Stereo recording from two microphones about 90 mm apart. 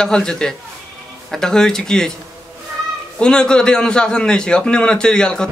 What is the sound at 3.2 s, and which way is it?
A man's voice, 10° left (ahead or behind).